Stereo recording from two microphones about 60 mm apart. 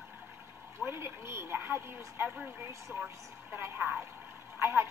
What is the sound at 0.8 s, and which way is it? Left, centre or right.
Speech, right.